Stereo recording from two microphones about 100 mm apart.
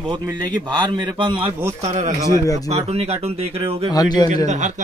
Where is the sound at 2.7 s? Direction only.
90° right.